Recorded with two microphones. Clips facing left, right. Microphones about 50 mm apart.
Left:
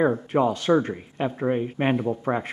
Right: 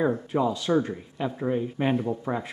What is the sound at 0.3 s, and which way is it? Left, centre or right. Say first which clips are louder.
Speech: left 4 dB; left.